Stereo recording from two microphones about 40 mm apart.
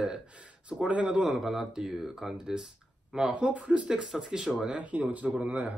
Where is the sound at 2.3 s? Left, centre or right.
Right.